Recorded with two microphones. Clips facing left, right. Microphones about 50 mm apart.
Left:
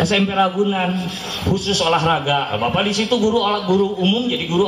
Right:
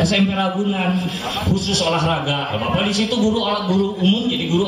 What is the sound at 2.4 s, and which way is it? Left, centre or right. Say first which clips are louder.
Speech: left 2 dB; centre.